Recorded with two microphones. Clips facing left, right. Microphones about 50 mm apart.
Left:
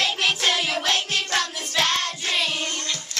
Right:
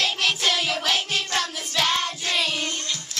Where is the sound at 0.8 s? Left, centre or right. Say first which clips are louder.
Left 1 dB; centre.